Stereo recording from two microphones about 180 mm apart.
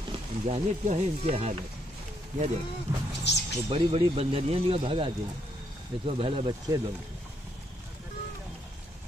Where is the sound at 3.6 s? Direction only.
30° right (ahead or behind).